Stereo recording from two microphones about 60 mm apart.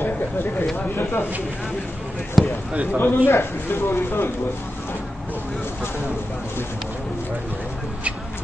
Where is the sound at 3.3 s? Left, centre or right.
Left.